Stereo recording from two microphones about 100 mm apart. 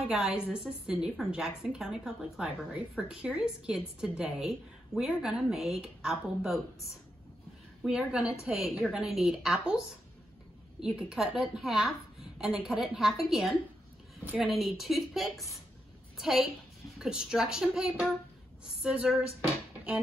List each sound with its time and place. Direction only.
0.0 s a woman's voice: 10° right (ahead or behind)
7.8 s a woman's voice: 10° right (ahead or behind)
10.8 s a woman's voice: 5° right (ahead or behind)
14.2 s a woman's voice: 15° right (ahead or behind)
14.6 s a woman's voice: centre (ahead or behind)